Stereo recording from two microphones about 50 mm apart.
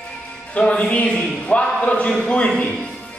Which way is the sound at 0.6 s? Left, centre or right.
Left.